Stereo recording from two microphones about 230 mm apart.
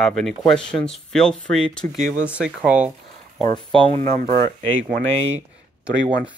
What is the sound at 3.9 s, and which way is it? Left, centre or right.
Speech, right.